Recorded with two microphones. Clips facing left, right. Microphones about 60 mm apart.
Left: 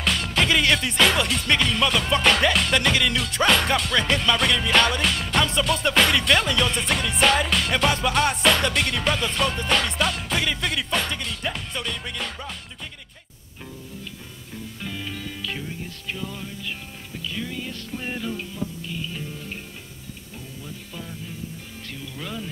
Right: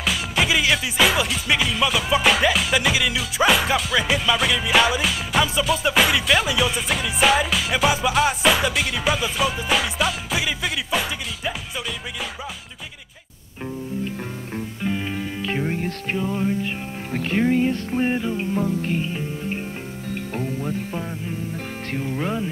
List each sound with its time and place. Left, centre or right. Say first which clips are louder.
0.0 s music: right 1 dB; centre
14.8 s music: right 7 dB; right
15.6 s music: right 9 dB; right
16.2 s music: right 11 dB; right
17.1 s music: right 12 dB; right
18.5 s music: right 10 dB; right
19.0 s music: right 6 dB; right
20.3 s music: right 13 dB; right